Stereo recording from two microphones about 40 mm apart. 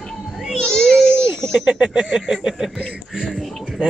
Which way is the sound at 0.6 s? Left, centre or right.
Centre.